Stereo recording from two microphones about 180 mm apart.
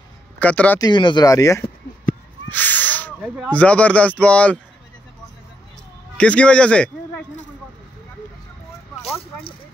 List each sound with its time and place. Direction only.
0.4 s speech: 10° left (ahead or behind)
0.7 s speech: 25° left (ahead or behind)
2.5 s a sound: 10° left (ahead or behind)
3.4 s speech: 5° left (ahead or behind)
6.1 s a man's voice: 5° left (ahead or behind)
9.2 s a sound: 30° left (ahead or behind)